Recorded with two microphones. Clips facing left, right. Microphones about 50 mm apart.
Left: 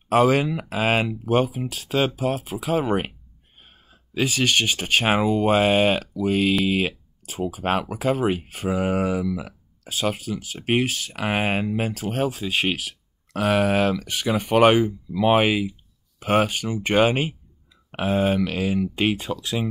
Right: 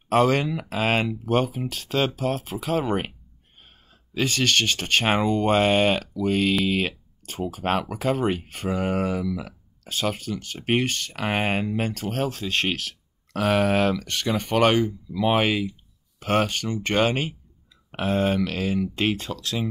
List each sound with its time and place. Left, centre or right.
0.1 s speech: centre